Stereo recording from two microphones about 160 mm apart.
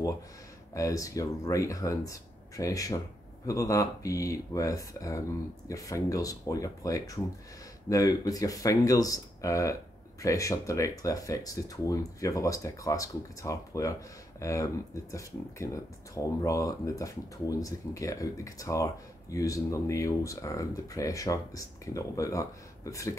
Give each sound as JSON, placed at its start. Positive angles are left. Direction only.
{"t": 0.7, "sound": "speech", "side_deg": 20}